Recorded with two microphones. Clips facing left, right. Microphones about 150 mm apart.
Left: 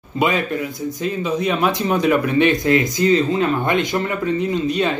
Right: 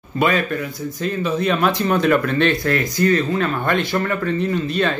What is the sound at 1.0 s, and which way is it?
Speech, 15° left (ahead or behind).